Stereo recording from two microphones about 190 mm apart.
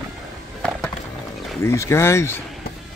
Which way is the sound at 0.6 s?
5° left (ahead or behind).